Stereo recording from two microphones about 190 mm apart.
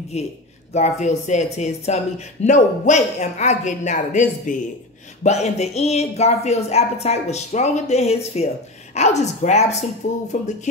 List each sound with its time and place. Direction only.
0.1 s speech: 35° left (ahead or behind)